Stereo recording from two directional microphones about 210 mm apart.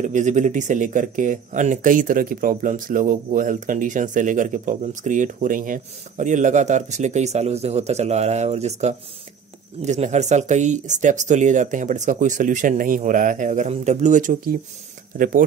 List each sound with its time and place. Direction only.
0.0 s speech: 35° right (ahead or behind)